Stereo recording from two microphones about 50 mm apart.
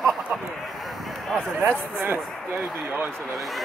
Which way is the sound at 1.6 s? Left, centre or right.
Right.